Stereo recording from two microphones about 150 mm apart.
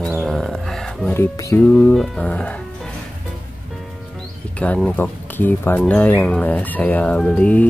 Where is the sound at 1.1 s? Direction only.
20° left (ahead or behind).